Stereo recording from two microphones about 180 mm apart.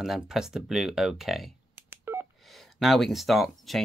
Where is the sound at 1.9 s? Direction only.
15° right (ahead or behind).